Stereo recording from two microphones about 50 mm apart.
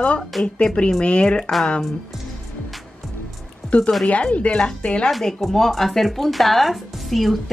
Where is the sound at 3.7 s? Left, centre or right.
Left.